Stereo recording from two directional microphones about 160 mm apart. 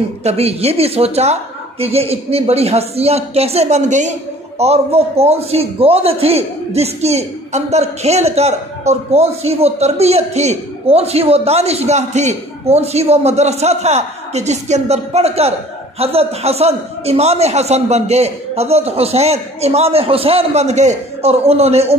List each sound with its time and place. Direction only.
0.2 s a man's voice: 40° right (ahead or behind)